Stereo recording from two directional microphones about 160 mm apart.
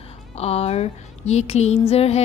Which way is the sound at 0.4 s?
40° left (ahead or behind).